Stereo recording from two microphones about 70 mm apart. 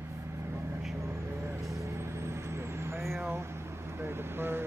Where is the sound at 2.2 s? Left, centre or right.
Right.